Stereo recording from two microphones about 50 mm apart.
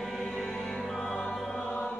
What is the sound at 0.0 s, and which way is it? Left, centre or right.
Music, centre.